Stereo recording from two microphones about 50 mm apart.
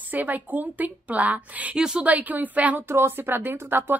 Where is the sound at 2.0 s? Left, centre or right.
Right.